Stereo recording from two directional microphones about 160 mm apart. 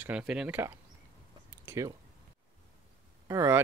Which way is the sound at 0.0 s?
5° right (ahead or behind).